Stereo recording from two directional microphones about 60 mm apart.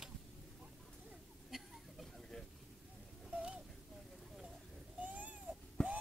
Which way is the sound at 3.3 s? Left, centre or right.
Centre.